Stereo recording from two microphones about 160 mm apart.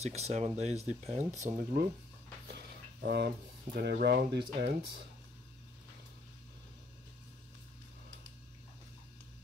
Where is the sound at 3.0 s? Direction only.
90° right.